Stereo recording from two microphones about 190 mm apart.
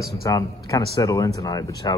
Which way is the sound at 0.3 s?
15° left (ahead or behind).